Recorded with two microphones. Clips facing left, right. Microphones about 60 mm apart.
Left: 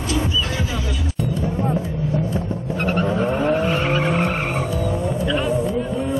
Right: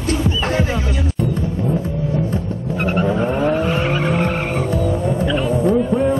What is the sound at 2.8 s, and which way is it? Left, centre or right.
Vehicle, centre.